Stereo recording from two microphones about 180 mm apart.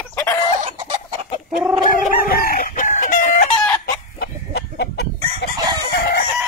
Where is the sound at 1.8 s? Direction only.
50° left (ahead or behind).